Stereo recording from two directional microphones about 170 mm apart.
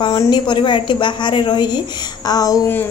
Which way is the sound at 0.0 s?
25° left (ahead or behind).